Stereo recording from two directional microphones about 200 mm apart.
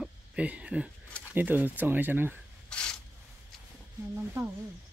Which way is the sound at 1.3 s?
10° right (ahead or behind).